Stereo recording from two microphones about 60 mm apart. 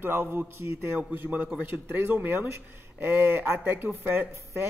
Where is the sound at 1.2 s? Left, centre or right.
Right.